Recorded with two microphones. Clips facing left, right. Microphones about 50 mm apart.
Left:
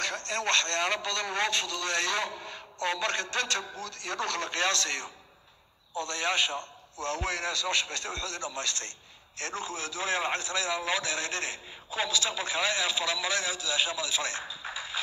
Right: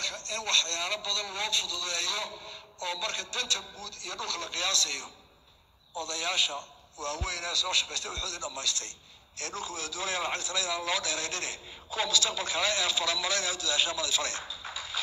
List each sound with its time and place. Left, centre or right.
0.0 s a man's voice: left